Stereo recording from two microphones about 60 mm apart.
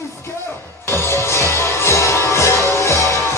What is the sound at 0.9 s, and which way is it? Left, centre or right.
Music, left.